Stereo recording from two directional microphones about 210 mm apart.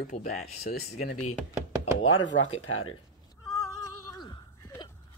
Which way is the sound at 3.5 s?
15° left (ahead or behind).